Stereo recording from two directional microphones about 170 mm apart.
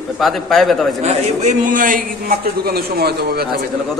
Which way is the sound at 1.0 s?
40° right (ahead or behind).